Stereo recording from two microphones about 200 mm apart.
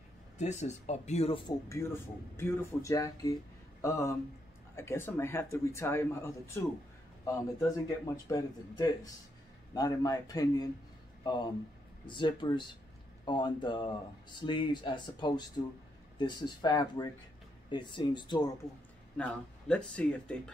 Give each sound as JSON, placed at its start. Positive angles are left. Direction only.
{"t": 0.4, "sound": "speech", "side_deg": 35}
{"t": 1.7, "sound": "speech", "side_deg": 15}
{"t": 19.1, "sound": "speech", "side_deg": 5}